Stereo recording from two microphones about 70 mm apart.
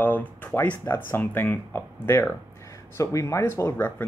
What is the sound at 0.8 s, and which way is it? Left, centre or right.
Speech, left.